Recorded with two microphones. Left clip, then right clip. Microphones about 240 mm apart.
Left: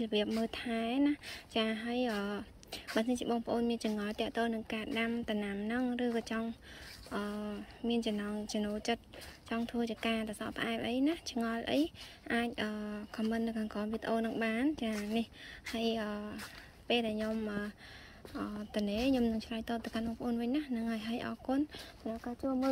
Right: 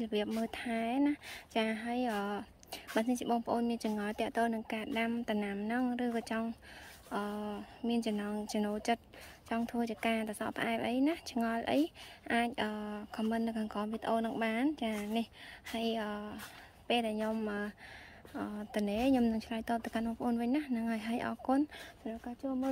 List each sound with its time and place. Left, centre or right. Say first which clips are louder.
0.0 s speech: left 2 dB; centre